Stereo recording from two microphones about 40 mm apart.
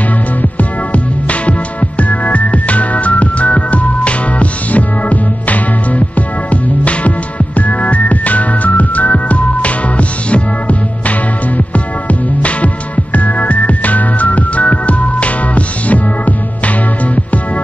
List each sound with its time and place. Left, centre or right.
0.4 s music: left